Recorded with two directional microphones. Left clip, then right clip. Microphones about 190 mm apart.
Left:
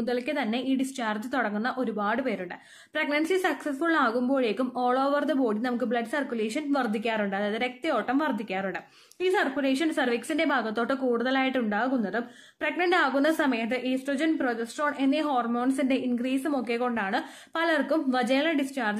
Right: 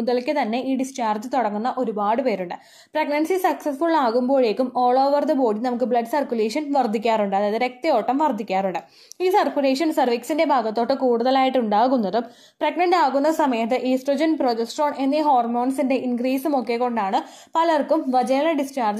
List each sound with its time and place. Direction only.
0.0 s a woman's voice: 15° right (ahead or behind)
13.5 s a woman's voice: 20° right (ahead or behind)